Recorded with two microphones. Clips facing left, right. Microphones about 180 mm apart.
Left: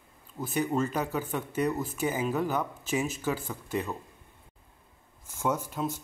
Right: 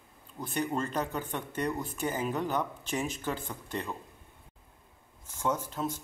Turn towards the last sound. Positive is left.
turn(degrees=10)  # may be behind; listen again after turning